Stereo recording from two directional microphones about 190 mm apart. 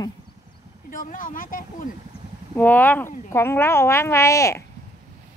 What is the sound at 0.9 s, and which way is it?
Speech, 45° left (ahead or behind).